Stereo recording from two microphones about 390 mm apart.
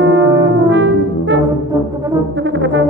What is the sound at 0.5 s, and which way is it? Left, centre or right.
Brass instrument, right.